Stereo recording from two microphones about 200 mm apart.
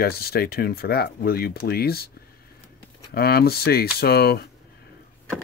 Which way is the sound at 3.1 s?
50° left (ahead or behind).